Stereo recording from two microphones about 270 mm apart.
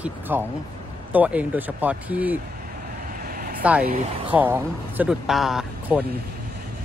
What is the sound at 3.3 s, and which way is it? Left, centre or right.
Vehicle, right.